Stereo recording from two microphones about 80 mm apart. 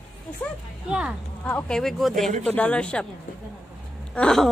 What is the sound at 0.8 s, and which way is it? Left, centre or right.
Speech, centre.